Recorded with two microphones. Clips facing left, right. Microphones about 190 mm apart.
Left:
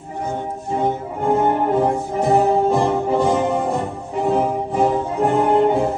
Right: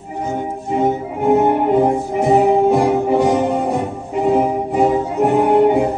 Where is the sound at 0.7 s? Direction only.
10° right (ahead or behind).